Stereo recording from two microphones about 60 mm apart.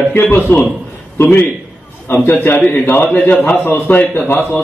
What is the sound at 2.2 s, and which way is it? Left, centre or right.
Speech, left.